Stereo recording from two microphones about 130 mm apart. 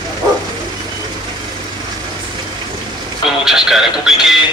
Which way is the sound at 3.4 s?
5° right (ahead or behind).